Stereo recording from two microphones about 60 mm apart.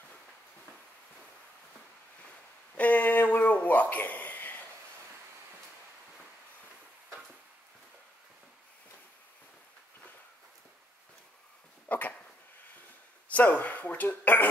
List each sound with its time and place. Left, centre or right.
2.8 s a sound: left
11.9 s dog: left
13.3 s speech: left